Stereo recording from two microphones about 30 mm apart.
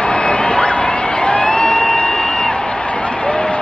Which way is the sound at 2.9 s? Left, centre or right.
Left.